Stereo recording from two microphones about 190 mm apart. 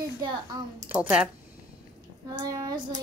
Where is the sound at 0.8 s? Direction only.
10° right (ahead or behind).